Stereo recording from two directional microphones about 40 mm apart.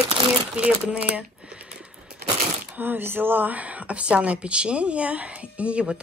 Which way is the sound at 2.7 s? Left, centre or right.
Right.